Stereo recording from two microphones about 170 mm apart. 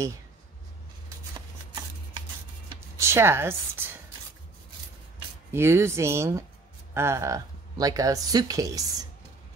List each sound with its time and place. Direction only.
3.0 s a woman's voice: 15° right (ahead or behind)
5.5 s speech: 15° right (ahead or behind)